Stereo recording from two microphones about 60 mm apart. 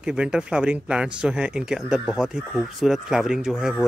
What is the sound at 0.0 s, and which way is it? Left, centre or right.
Speech, centre.